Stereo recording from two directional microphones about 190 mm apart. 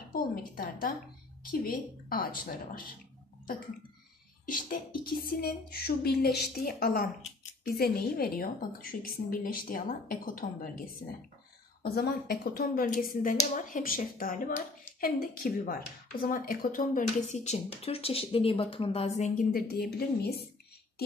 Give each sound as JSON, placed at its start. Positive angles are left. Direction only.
{"t": 0.1, "sound": "speech", "side_deg": 50}
{"t": 4.5, "sound": "speech", "side_deg": 45}